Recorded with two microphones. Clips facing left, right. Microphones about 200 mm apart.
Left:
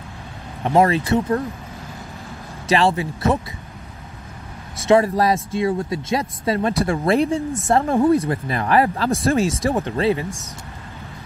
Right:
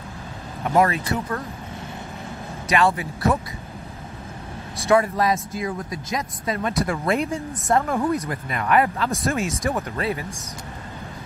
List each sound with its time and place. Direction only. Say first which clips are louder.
0.7 s speech: left 4 dB; 30° left (ahead or behind)
2.7 s speech: left 3 dB; 30° left (ahead or behind)
4.8 s speech: left 3 dB; 30° left (ahead or behind)